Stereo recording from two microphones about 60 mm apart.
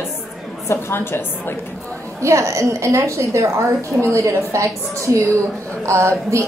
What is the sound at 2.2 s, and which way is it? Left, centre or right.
A woman's voice, right.